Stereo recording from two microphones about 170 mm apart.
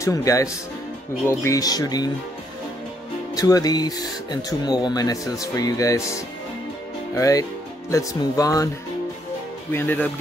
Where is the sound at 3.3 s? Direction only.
20° left (ahead or behind).